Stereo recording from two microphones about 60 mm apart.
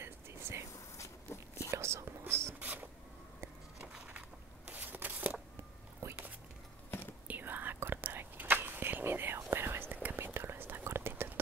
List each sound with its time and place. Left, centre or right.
0.0 s whispering: right
0.9 s walk: left
1.7 s whispering: right
2.6 s printer: right
3.8 s a sound: right
7.2 s whispering: right